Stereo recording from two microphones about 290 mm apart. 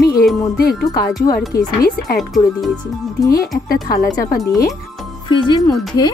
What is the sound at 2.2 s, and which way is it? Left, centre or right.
Speech, centre.